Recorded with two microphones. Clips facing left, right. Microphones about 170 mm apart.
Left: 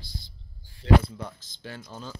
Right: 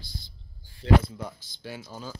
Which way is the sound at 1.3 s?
10° right (ahead or behind).